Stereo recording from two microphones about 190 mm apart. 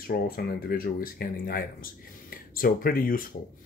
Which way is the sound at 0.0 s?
50° left (ahead or behind).